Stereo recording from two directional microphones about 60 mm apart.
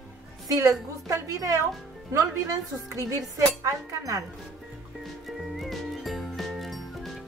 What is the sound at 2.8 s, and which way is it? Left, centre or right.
Speech, right.